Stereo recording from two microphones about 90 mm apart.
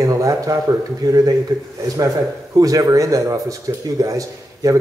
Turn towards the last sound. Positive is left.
turn(degrees=-40)  # may be behind; listen again after turning